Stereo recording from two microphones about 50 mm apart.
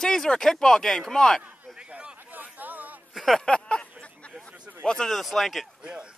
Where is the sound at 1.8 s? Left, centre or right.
Right.